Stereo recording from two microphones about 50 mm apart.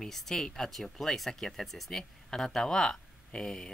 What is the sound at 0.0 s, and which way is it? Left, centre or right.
Speech, centre.